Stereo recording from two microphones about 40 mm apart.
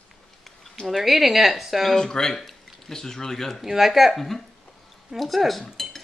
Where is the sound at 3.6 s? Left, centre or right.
Centre.